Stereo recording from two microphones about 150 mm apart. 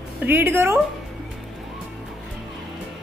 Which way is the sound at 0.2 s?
15° right (ahead or behind).